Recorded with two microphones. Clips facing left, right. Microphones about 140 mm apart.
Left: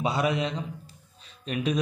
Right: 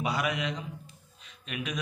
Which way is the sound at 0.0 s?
30° left (ahead or behind).